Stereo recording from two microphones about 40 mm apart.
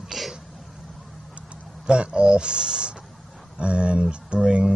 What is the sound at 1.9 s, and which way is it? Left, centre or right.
Speech, right.